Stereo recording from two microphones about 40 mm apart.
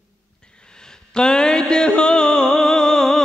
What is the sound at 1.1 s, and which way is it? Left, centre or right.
Music, centre.